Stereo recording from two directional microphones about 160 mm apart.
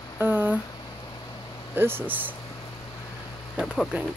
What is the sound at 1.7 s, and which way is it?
Speech, 15° right (ahead or behind).